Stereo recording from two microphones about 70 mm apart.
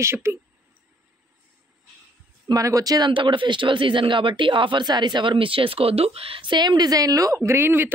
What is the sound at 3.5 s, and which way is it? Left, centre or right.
Speech, right.